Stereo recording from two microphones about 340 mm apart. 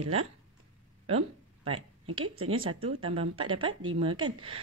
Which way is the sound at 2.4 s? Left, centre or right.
Right.